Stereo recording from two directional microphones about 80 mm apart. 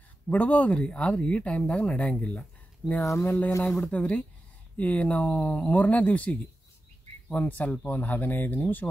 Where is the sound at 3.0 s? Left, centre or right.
Left.